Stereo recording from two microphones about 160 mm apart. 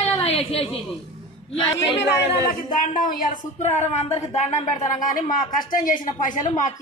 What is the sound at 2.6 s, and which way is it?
A woman's voice, 55° left (ahead or behind).